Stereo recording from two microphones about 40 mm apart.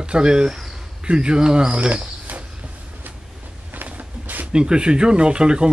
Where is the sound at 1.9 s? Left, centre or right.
Right.